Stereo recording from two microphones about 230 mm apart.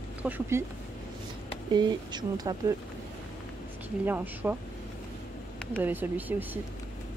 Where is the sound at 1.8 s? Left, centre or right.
Centre.